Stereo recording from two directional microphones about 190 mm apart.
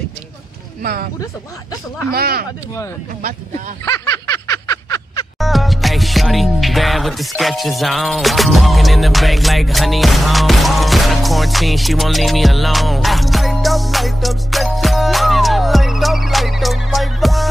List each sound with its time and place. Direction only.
2.0 s speech: 55° right (ahead or behind)
3.8 s a sound: 15° left (ahead or behind)
5.4 s music: centre (ahead or behind)